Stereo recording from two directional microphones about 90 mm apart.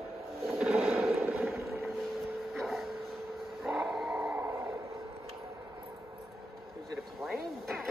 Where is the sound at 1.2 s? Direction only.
20° right (ahead or behind).